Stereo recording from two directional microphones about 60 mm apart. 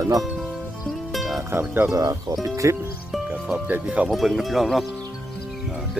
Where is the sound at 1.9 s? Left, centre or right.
Right.